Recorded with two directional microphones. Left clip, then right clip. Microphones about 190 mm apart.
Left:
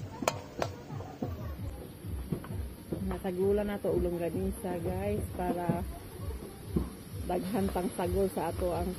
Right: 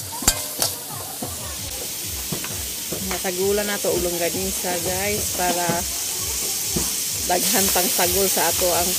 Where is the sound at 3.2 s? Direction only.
20° right (ahead or behind).